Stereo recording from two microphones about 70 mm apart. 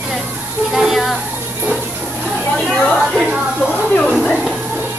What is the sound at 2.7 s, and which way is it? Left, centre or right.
Chatter, centre.